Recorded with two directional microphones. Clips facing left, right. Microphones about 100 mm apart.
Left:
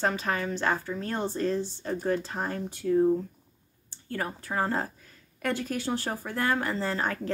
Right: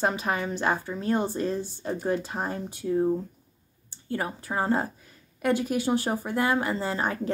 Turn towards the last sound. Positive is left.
turn(degrees=-15)  # may be behind; listen again after turning